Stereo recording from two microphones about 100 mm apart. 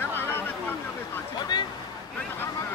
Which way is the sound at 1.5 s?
45° left (ahead or behind).